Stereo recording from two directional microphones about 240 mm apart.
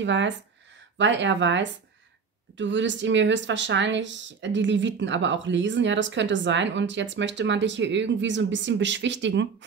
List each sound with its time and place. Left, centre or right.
0.0 s speech: right